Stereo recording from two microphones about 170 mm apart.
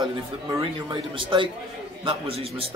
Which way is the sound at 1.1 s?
30° right (ahead or behind).